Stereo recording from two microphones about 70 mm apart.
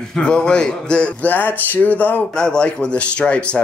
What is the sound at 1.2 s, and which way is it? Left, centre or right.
Speech, left.